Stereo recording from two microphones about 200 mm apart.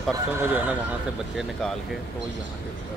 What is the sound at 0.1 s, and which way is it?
Speech, 10° right (ahead or behind).